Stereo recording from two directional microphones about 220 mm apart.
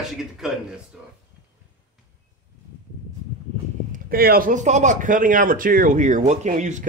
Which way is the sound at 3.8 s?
40° right (ahead or behind).